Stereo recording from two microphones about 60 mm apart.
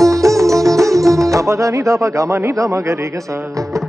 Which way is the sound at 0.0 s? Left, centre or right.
Right.